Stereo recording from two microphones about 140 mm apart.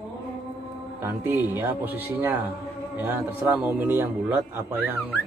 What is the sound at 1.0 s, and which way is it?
A man's voice, 15° right (ahead or behind).